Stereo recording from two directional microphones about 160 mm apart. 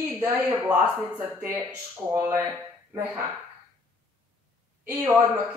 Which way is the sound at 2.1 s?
15° right (ahead or behind).